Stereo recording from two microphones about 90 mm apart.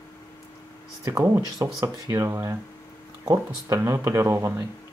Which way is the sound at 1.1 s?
40° right (ahead or behind).